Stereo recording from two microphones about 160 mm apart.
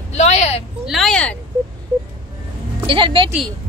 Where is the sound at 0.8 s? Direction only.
Centre (ahead or behind).